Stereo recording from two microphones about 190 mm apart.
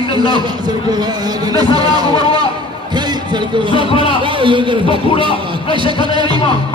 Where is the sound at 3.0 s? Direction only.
25° right (ahead or behind).